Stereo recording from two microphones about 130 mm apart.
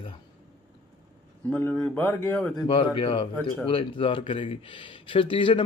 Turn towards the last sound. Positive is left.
turn(degrees=40)  # may be behind; listen again after turning